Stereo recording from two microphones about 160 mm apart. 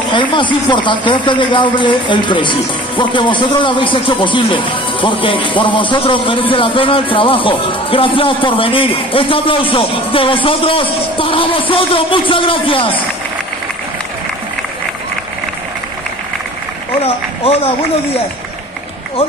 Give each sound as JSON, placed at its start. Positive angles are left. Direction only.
{"t": 0.1, "sound": "speech", "side_deg": 30}
{"t": 17.0, "sound": "speech", "side_deg": 40}